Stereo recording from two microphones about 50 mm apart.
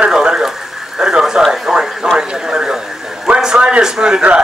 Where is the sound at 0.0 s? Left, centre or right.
Centre.